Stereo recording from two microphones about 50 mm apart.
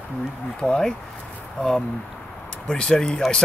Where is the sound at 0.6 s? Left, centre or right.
Centre.